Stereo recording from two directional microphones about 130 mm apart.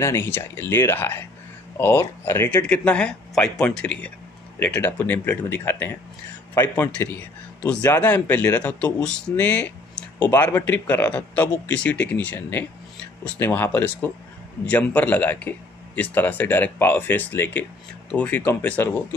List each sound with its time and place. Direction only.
0.0 s a man's voice: 20° left (ahead or behind)
2.5 s a man's voice: 10° left (ahead or behind)